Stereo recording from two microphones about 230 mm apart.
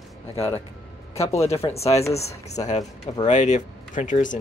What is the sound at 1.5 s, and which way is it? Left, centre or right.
Speech, left.